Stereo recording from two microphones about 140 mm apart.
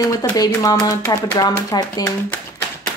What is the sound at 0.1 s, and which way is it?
Speech, 25° left (ahead or behind).